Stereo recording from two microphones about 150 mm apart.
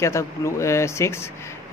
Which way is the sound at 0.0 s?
20° left (ahead or behind).